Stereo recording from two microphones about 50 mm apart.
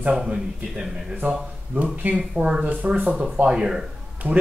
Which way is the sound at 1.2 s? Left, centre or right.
Right.